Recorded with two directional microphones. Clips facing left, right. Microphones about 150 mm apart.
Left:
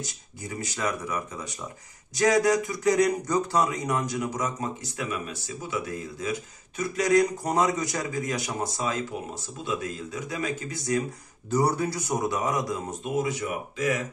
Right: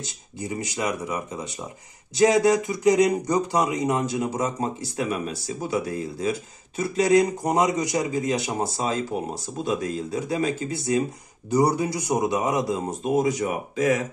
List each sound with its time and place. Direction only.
0.0 s a man's voice: 20° right (ahead or behind)
11.5 s a man's voice: 15° right (ahead or behind); by 13.8 s 40° right (ahead or behind)